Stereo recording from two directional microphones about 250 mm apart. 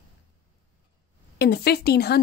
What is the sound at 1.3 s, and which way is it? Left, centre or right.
Speech, left.